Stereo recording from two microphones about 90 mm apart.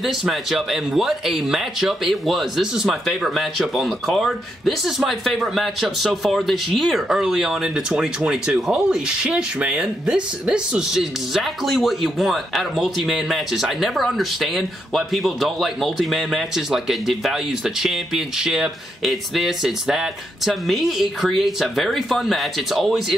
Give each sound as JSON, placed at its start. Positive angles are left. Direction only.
{"t": 0.0, "sound": "speech", "side_deg": 0}